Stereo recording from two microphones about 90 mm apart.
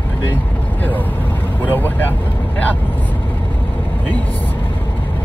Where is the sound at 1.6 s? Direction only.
20° left (ahead or behind).